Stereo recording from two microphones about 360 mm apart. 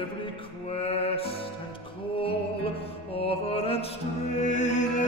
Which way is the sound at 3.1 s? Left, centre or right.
Centre.